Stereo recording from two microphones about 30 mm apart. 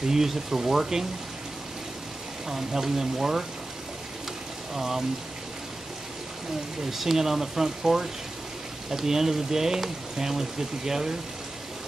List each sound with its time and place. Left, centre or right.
0.0 s speech: centre
2.4 s speech: centre
4.7 s speech: centre
6.9 s speech: centre